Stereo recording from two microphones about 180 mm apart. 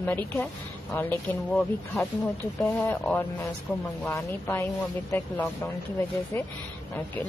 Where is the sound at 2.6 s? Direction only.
10° left (ahead or behind).